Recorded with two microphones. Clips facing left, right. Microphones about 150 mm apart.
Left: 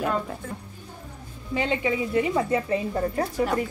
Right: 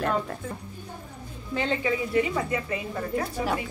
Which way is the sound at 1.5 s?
15° left (ahead or behind).